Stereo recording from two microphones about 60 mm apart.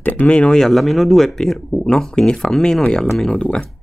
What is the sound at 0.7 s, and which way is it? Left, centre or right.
Speech, centre.